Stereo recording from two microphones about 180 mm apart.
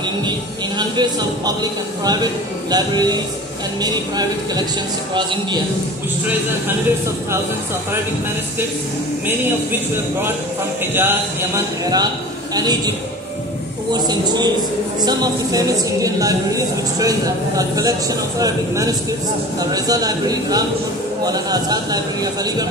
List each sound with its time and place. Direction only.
0.7 s a woman's voice: 25° right (ahead or behind)
11.0 s a woman's voice: 15° right (ahead or behind)
13.9 s a woman's voice: 25° right (ahead or behind)